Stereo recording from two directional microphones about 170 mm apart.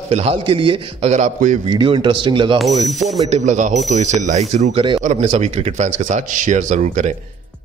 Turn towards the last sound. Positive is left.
turn(degrees=-45)  # may be behind; listen again after turning